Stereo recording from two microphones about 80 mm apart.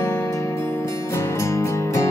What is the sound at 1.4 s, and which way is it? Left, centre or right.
Music, left.